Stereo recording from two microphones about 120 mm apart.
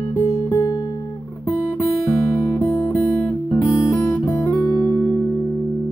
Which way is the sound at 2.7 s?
25° left (ahead or behind).